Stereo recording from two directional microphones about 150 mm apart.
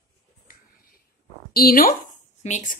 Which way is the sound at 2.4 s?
50° left (ahead or behind).